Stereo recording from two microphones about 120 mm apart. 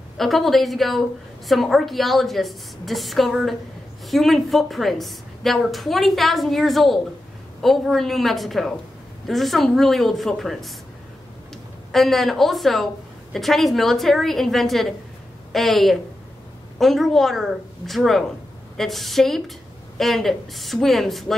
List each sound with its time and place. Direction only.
0.2 s a woman's voice: centre (ahead or behind)
11.9 s a woman's voice: centre (ahead or behind)